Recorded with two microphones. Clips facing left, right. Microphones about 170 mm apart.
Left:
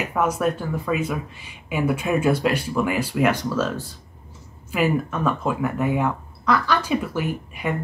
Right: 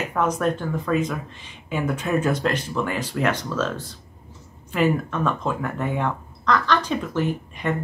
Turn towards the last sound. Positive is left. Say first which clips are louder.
# right 1 dB
turn(degrees=10)  # may be behind; listen again after turning